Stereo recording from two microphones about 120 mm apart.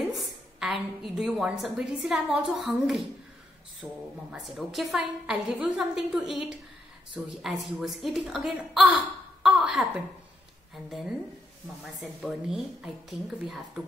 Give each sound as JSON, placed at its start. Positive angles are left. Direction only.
{"t": 0.1, "sound": "a woman's voice", "side_deg": 0}
{"t": 3.8, "sound": "speech", "side_deg": -15}
{"t": 4.3, "sound": "a woman's voice", "side_deg": -5}